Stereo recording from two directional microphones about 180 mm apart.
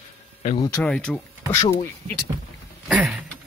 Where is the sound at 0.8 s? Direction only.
5° left (ahead or behind).